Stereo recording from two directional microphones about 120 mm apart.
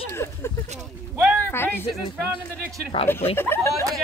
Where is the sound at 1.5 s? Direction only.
20° left (ahead or behind).